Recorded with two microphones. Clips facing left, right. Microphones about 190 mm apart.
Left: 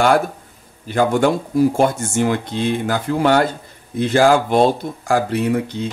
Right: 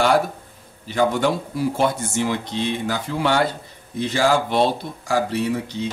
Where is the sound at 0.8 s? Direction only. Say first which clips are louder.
Left 4 dB; 50° left (ahead or behind).